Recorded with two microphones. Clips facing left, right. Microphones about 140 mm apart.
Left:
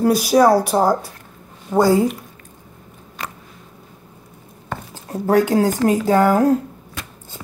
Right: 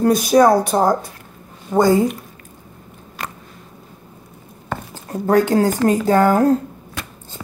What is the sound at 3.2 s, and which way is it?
Biting, 5° right (ahead or behind).